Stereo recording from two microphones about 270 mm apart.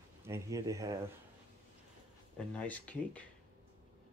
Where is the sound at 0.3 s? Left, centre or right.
Centre.